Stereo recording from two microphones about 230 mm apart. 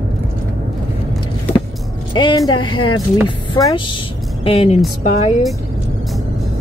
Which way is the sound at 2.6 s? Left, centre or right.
Left.